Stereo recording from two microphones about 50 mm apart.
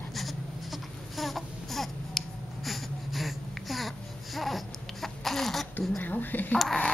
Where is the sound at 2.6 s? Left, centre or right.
Centre.